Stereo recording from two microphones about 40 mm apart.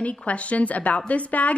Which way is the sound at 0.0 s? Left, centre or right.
Left.